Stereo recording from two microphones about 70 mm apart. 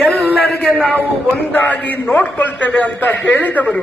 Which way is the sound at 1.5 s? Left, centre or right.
Left.